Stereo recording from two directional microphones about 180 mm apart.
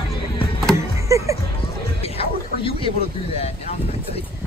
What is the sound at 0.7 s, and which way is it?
Vehicle, 15° right (ahead or behind).